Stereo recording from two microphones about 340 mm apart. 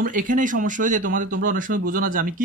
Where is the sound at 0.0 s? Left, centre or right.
Right.